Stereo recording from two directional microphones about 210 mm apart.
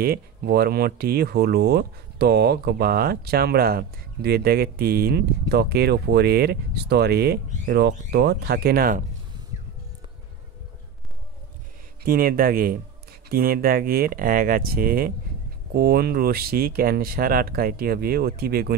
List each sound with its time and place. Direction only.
0.0 s speech: 45° right (ahead or behind)
12.0 s speech: 45° right (ahead or behind)